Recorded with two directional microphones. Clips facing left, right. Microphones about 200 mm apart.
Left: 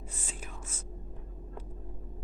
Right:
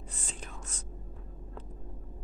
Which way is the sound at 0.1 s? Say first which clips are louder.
Right 1 dB; 5° left (ahead or behind).